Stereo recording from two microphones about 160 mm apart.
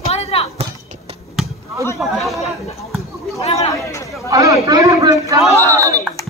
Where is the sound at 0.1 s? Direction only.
40° left (ahead or behind).